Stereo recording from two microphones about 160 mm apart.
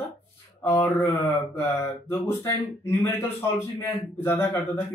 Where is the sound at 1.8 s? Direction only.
15° left (ahead or behind).